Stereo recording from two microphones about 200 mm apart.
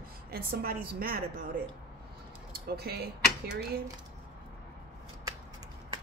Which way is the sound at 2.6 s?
50° right (ahead or behind).